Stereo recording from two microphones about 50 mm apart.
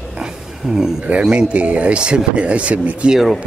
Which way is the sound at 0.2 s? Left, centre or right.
Centre.